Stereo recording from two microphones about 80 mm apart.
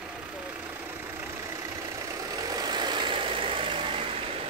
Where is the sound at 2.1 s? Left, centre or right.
Right.